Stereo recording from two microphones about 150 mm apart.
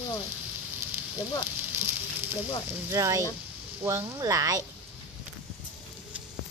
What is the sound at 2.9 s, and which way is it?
Speech, 20° right (ahead or behind).